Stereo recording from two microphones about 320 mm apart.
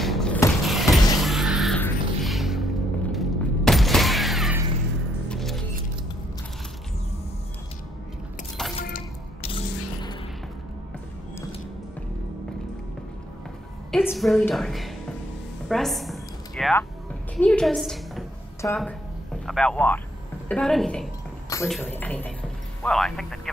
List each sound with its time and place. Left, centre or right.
0.0 s mechanisms: centre
1.2 s music: centre
5.3 s keys jangling: centre
8.8 s music: left
13.9 s a woman's voice: centre
15.7 s a sound: centre
19.4 s a man's voice: centre